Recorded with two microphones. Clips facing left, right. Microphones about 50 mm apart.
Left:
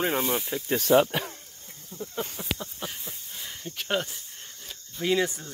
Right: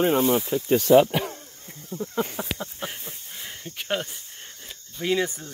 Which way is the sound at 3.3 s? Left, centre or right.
Centre.